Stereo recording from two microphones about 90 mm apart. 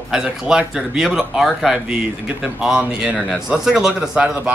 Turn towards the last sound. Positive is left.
turn(degrees=-10)  # may be behind; listen again after turning